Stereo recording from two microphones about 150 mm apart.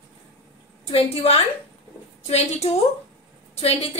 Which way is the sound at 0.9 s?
40° left (ahead or behind).